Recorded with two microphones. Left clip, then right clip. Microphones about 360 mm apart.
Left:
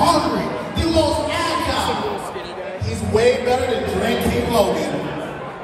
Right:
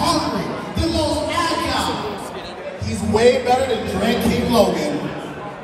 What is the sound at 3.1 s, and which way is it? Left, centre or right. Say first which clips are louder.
Speech: right 2 dB; right.